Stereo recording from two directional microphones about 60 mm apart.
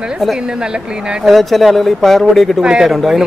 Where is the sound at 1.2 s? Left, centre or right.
Centre.